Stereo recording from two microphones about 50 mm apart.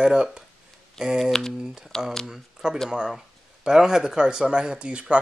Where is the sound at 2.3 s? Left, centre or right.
Centre.